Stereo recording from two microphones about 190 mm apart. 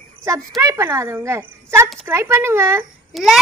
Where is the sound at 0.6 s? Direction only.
15° right (ahead or behind).